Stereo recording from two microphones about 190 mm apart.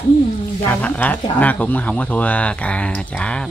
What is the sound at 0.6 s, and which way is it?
Speech, 10° left (ahead or behind).